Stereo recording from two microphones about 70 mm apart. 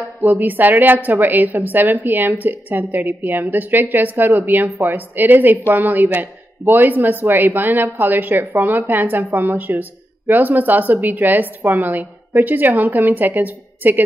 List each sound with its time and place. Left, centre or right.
0.2 s a woman's voice: right